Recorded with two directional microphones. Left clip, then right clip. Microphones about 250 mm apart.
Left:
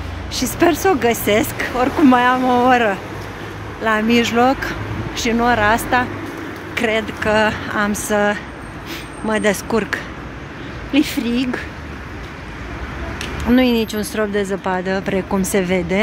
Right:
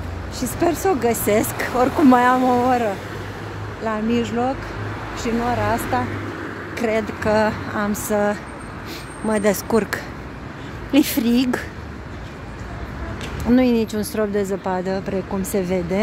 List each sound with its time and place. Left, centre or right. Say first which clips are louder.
0.3 s speech: left 5 dB; centre
13.5 s speech: left 2 dB; centre